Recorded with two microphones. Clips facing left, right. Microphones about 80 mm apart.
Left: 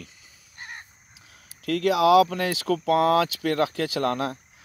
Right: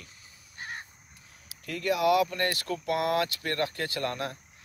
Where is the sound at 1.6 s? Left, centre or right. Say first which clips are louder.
Left 6 dB; left.